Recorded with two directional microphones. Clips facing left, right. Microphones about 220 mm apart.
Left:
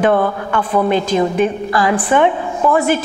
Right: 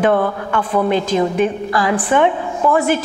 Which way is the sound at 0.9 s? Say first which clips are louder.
Left 1 dB; 15° left (ahead or behind).